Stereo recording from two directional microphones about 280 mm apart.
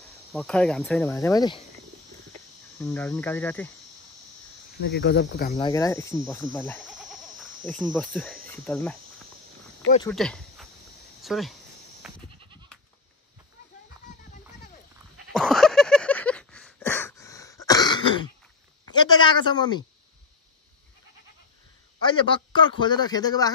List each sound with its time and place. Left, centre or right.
0.3 s cricket: centre
2.8 s speech: centre
4.7 s speech: left
5.6 s speech: centre
7.6 s cricket: centre
8.5 s speech: centre
10.0 s speech: centre
11.2 s cricket: centre
12.0 s goat: centre
15.3 s a sound: centre
22.0 s speech: centre